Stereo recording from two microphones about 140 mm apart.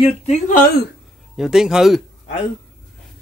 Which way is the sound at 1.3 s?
5° right (ahead or behind).